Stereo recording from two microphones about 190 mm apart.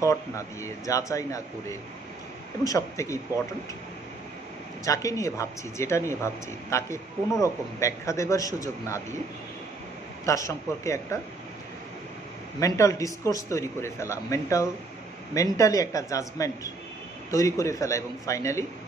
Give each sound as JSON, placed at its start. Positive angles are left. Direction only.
{"t": 0.0, "sound": "a man's voice", "side_deg": 15}
{"t": 2.6, "sound": "a man's voice", "side_deg": 15}
{"t": 4.8, "sound": "a man's voice", "side_deg": 15}
{"t": 10.2, "sound": "a man's voice", "side_deg": 15}
{"t": 12.5, "sound": "a man's voice", "side_deg": 15}